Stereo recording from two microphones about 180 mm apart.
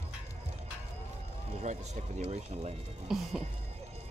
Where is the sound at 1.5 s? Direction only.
40° right (ahead or behind).